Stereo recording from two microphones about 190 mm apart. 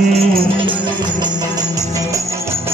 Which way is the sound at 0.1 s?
25° right (ahead or behind).